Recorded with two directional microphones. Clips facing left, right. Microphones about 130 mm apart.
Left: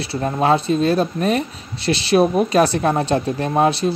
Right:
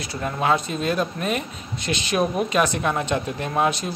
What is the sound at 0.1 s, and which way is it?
Speech, 30° left (ahead or behind).